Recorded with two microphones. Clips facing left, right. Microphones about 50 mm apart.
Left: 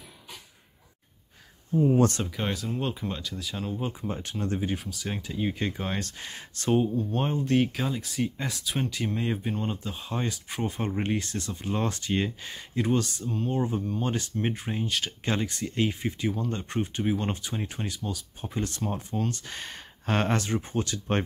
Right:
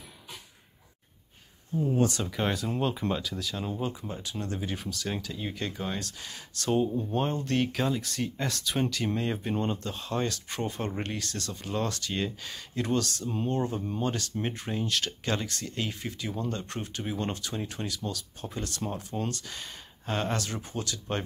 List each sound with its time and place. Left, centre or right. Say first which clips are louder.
2.3 s speech: right 1 dB; centre
4.1 s speech: left 3 dB; left
4.4 s speech: left 4 dB; left
4.7 s speech: even; centre
5.1 s speech: left 4 dB; left
5.7 s speech: left 2 dB; left
6.9 s speech: left 2 dB; centre
7.2 s speech: left 3 dB; centre
11.0 s speech: left 5 dB; left
13.5 s speech: left 2 dB; centre
14.0 s speech: left 2 dB; left
20.3 s speech: left 5 dB; left